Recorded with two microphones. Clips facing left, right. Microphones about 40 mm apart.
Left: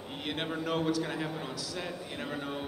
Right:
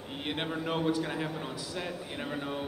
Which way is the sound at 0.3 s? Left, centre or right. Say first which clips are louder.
Even; centre.